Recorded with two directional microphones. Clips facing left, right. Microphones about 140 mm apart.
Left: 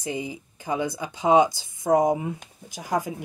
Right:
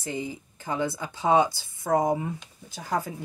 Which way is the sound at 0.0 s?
15° left (ahead or behind).